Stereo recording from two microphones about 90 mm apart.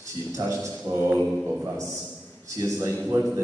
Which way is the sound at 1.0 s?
15° right (ahead or behind).